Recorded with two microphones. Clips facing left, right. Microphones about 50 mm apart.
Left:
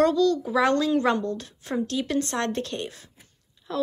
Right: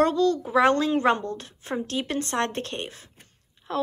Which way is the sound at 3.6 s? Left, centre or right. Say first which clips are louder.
Even; right.